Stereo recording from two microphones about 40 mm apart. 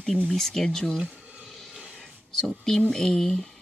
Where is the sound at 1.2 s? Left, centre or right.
Right.